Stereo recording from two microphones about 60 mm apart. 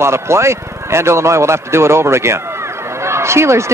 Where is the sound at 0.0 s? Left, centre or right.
Right.